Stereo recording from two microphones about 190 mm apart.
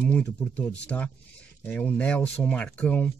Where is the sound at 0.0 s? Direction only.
5° left (ahead or behind).